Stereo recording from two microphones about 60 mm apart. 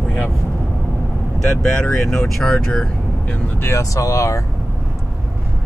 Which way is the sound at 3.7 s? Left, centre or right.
Left.